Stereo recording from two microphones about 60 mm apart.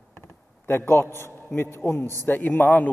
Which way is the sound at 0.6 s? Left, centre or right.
Left.